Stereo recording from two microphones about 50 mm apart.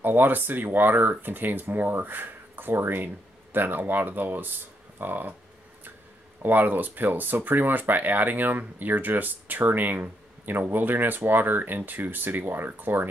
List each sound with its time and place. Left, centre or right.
0.0 s speech: right
6.4 s speech: right